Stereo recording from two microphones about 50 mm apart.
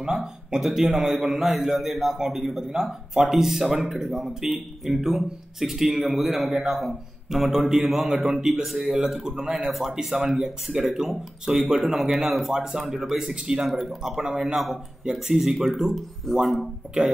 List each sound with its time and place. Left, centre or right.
0.0 s a man's voice: centre
13.7 s a man's voice: centre
16.3 s speech: centre